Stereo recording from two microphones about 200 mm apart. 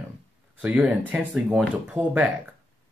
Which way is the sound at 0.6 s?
5° right (ahead or behind).